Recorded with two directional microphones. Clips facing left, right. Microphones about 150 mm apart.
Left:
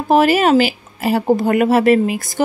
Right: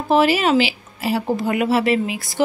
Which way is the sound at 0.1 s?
50° left (ahead or behind).